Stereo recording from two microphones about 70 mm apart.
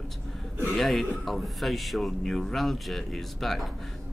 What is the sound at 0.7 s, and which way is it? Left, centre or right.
Speech, centre.